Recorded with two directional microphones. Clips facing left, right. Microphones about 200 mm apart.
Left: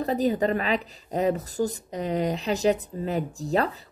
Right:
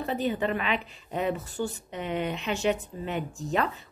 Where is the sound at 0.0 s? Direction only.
40° left (ahead or behind).